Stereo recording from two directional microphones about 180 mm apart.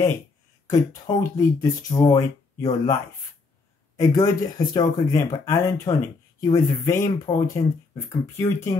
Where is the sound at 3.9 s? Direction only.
20° left (ahead or behind).